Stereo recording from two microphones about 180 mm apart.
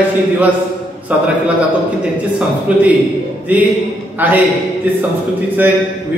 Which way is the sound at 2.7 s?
5° right (ahead or behind).